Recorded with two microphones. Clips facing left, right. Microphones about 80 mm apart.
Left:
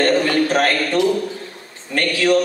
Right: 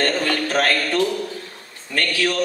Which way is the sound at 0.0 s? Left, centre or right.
Left.